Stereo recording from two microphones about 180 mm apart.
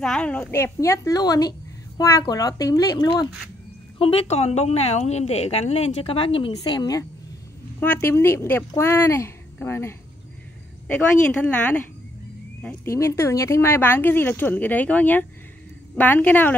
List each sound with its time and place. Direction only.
0.0 s speech: 5° left (ahead or behind); by 3.3 s 20° left (ahead or behind)
4.0 s speech: 35° left (ahead or behind); by 16.5 s 10° left (ahead or behind)